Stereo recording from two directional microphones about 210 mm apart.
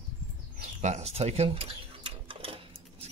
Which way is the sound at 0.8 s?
30° right (ahead or behind).